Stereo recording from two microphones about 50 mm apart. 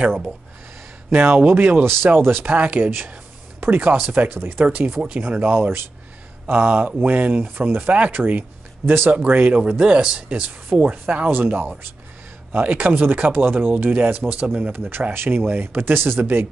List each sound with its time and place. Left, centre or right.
1.5 s speech: right
2.5 s speech: right
4.4 s speech: right
5.0 s speech: right
9.3 s speech: right
9.6 s speech: centre
10.9 s speech: right